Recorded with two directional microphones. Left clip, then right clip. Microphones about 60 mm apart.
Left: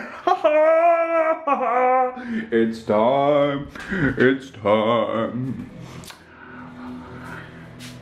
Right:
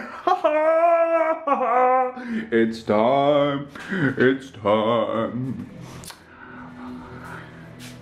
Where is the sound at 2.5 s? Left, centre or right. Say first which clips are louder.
Left 1 dB; right.